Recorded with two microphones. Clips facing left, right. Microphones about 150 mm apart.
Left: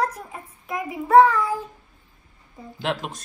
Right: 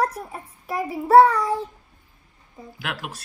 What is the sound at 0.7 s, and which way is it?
Child singing, 35° right (ahead or behind).